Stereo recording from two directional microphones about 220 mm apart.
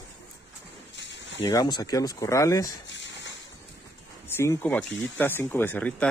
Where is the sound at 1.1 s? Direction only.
55° left (ahead or behind).